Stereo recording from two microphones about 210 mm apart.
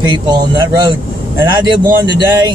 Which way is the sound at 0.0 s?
20° right (ahead or behind).